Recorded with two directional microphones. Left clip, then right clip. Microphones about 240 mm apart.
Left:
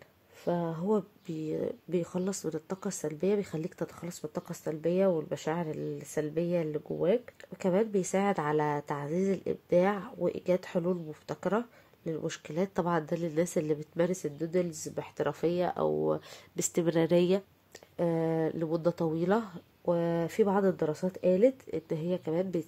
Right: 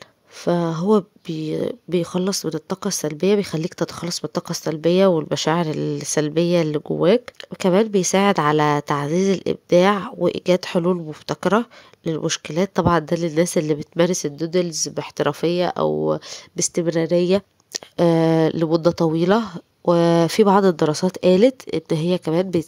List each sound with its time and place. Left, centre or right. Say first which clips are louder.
0.5 s speech: right 12 dB; right
17.7 s speech: right 13 dB; right
19.8 s speech: right 13 dB; right